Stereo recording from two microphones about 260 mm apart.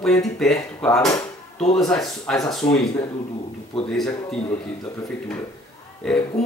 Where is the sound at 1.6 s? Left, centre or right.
Left.